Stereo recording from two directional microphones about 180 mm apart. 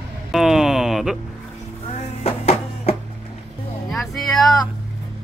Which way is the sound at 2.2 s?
35° left (ahead or behind).